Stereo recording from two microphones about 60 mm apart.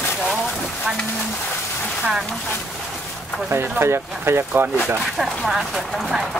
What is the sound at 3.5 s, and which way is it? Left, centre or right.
Speech, right.